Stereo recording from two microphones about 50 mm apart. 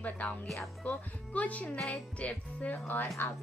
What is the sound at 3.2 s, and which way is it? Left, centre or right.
Speech, left.